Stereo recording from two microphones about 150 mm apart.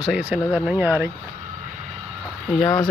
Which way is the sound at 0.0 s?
5° right (ahead or behind).